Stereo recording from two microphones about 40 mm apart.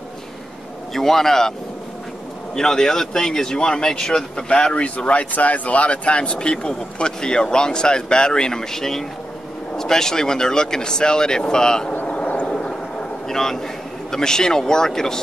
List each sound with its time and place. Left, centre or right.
0.9 s speech: centre
2.5 s speech: centre
4.8 s speech: left; by 11.9 s centre
12.1 s a sound: left
13.3 s speech: centre